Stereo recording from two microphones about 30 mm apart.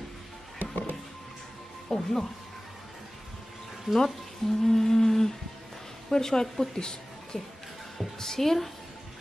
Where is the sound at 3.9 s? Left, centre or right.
Centre.